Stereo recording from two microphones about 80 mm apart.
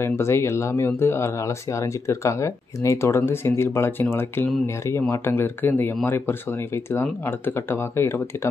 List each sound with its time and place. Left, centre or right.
0.0 s speech: left